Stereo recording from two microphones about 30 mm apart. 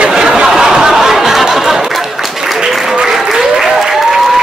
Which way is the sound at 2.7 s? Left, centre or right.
Centre.